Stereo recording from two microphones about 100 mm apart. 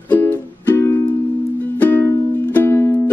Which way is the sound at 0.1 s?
20° left (ahead or behind).